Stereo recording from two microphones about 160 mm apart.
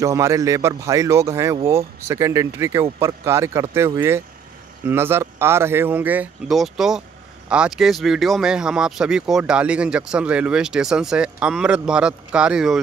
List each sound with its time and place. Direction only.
0.0 s speech: 20° right (ahead or behind); by 12.8 s 5° right (ahead or behind)